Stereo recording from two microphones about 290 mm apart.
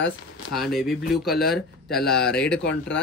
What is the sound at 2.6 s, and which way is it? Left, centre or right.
Speech, left.